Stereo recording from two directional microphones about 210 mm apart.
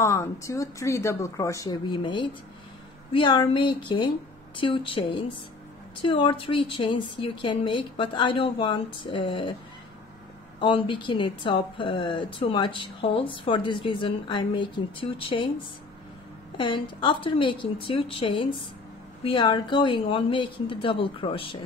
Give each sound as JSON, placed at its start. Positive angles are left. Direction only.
{"t": 0.0, "sound": "speech", "side_deg": 15}
{"t": 10.6, "sound": "speech", "side_deg": 25}
{"t": 16.5, "sound": "speech", "side_deg": 25}